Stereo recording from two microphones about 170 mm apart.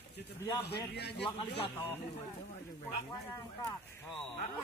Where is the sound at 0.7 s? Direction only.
80° left.